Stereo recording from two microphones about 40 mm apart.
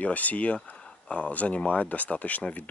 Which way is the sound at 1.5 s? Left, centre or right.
Left.